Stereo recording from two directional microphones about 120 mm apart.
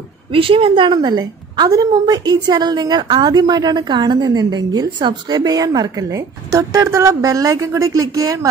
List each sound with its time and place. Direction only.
0.3 s a woman's voice: 50° right (ahead or behind); by 8.5 s 30° right (ahead or behind)